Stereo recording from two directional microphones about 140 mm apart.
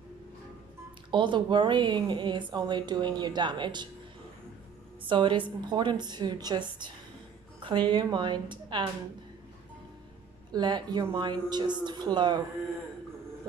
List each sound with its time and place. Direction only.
1.1 s a woman's voice: 35° right (ahead or behind)
5.0 s a woman's voice: 35° right (ahead or behind)
10.5 s a woman's voice: 30° right (ahead or behind)